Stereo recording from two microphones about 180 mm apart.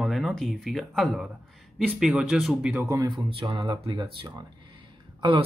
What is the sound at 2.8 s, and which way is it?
Speech, 20° right (ahead or behind).